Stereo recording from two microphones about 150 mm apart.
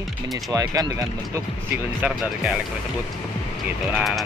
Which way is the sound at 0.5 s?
25° right (ahead or behind).